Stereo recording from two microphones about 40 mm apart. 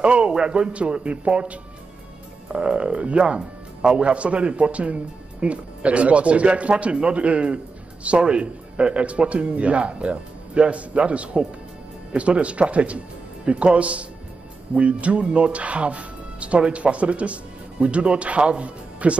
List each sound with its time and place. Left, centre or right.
0.0 s a man's voice: right